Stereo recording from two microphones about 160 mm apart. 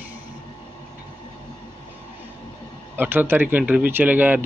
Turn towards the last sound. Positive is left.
turn(degrees=-10)  # may be behind; listen again after turning